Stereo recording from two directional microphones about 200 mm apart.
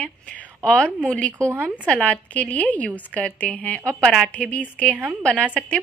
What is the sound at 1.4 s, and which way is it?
Speech, 10° right (ahead or behind).